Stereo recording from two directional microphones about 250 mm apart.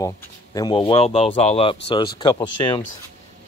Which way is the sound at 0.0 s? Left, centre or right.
Centre.